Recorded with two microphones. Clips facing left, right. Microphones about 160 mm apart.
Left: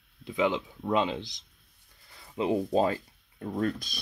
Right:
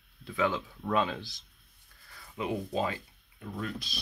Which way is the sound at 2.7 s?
40° left (ahead or behind).